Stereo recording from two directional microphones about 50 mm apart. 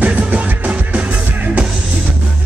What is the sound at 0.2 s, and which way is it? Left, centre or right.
Music, right.